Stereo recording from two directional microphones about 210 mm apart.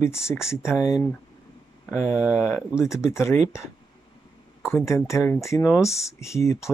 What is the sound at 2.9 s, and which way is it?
Speech, 15° left (ahead or behind).